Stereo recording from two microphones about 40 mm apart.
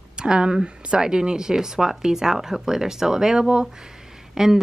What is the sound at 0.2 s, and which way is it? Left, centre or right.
Speech, right.